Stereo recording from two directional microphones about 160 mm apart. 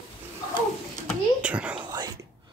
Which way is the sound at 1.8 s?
30° right (ahead or behind).